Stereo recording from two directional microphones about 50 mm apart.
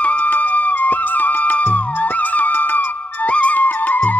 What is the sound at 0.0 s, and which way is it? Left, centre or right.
Music, left.